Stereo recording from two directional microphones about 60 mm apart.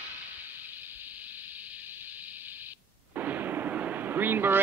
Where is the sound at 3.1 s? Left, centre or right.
Right.